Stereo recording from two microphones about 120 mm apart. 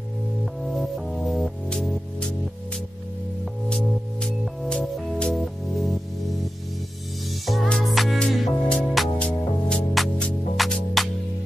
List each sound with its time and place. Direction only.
0.7 s music: centre (ahead or behind)
4.2 s music: 10° left (ahead or behind)
7.4 s music: 5° left (ahead or behind)